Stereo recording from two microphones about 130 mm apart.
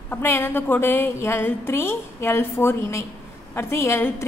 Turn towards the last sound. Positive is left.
turn(degrees=20)  # may be behind; listen again after turning